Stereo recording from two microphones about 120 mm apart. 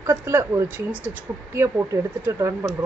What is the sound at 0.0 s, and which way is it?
Speech, 25° right (ahead or behind).